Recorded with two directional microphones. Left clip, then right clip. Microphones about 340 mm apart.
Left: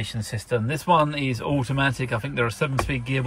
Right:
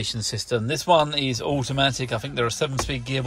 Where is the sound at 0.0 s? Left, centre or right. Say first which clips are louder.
Right 5 dB; centre.